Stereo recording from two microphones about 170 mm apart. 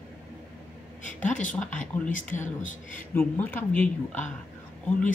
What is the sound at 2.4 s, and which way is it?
Speech, 50° left (ahead or behind).